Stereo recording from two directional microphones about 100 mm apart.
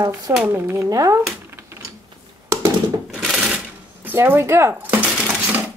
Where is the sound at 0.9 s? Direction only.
35° right (ahead or behind).